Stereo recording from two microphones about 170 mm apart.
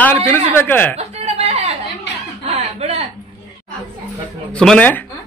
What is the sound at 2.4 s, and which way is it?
Chicken, 35° right (ahead or behind).